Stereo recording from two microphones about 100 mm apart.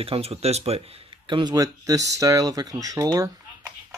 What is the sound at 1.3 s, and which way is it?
Speech, 45° right (ahead or behind).